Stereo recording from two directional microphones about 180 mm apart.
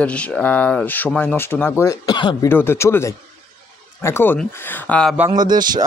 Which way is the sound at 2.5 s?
15° left (ahead or behind).